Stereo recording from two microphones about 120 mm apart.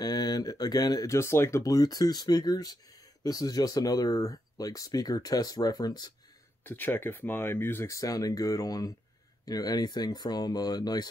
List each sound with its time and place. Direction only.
0.0 s speech: 35° left (ahead or behind)
6.6 s speech: 15° left (ahead or behind); by 11.1 s 35° left (ahead or behind)